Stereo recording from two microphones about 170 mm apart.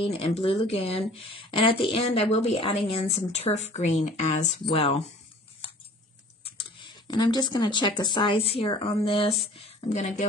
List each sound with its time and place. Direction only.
0.0 s speech: 35° left (ahead or behind)
6.4 s tick-tock: 30° left (ahead or behind)
8.0 s speech: 30° left (ahead or behind)
9.6 s a woman's voice: 45° left (ahead or behind)